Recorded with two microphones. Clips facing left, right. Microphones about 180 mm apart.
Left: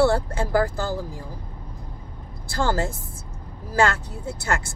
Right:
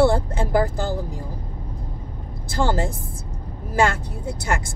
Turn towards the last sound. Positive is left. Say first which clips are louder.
# right 1 dB
turn(degrees=-15)  # may be behind; listen again after turning